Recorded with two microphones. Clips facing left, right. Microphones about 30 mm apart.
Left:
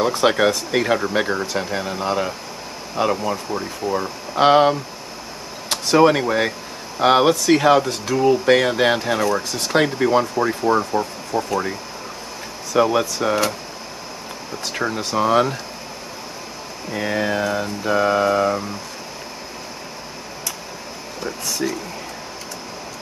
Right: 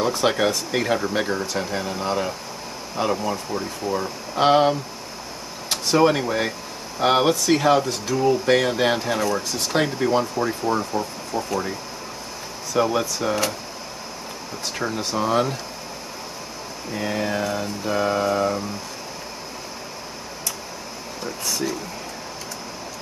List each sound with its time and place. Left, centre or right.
0.0 s speech: centre
12.7 s speech: left
14.8 s speech: centre
16.9 s speech: centre
21.2 s a sound: centre